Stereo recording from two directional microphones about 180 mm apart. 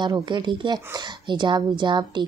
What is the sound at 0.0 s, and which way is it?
Speech, 25° right (ahead or behind).